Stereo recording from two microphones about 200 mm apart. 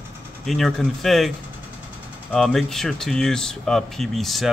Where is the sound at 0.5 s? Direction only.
Centre (ahead or behind).